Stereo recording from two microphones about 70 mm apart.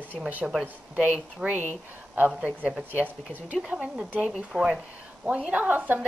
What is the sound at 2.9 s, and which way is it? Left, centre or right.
A woman's voice, right.